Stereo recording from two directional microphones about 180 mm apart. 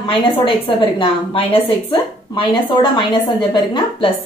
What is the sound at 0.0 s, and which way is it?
A woman's voice, 25° left (ahead or behind).